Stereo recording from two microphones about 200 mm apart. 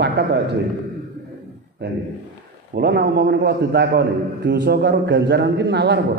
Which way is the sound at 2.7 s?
55° right (ahead or behind).